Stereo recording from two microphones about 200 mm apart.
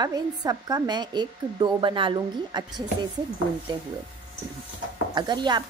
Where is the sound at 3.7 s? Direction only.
20° right (ahead or behind).